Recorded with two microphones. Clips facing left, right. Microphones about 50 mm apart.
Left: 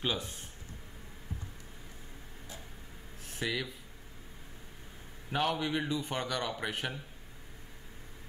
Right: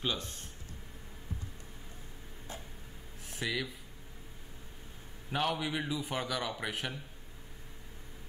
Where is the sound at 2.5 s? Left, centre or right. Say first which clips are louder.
Right 4 dB; right.